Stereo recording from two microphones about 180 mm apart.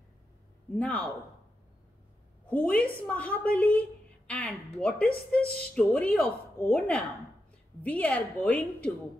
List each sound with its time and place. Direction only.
0.7 s a woman's voice: 10° left (ahead or behind)
2.5 s a woman's voice: 10° left (ahead or behind)
5.4 s speech: 60° left (ahead or behind)
5.8 s a woman's voice: 5° left (ahead or behind)